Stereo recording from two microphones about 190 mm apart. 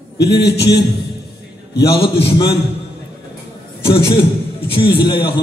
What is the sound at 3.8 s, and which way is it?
Mantra, 30° left (ahead or behind).